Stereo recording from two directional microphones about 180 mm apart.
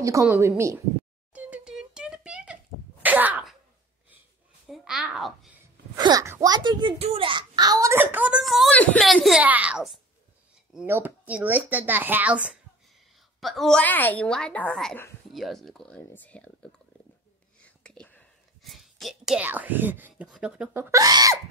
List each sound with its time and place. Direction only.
0.0 s a child's voice: 15° right (ahead or behind)
1.3 s a sound: 5° right (ahead or behind)
4.6 s a child's voice: centre (ahead or behind)
5.9 s a child's voice: 20° right (ahead or behind); by 16.4 s 10° left (ahead or behind)
17.6 s whispering: 5° left (ahead or behind)
20.9 s speech: 20° right (ahead or behind)